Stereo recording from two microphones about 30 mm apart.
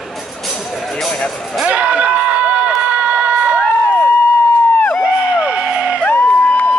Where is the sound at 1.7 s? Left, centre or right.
Right.